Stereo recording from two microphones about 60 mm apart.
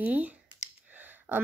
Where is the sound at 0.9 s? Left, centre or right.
Right.